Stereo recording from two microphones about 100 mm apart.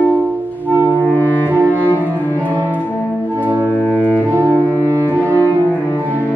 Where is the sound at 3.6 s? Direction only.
15° left (ahead or behind).